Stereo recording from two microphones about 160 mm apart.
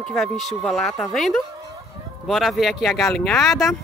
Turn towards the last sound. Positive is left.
turn(degrees=0)  # may be behind; listen again after turning